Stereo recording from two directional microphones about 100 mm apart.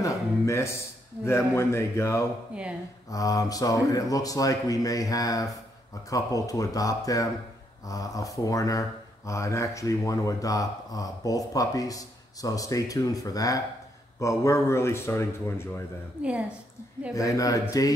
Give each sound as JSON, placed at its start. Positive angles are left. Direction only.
{"t": 0.0, "sound": "a sound", "side_deg": 30}
{"t": 1.2, "sound": "a man's voice", "side_deg": 30}
{"t": 16.2, "sound": "a woman's voice", "side_deg": -10}
{"t": 17.1, "sound": "speech", "side_deg": 35}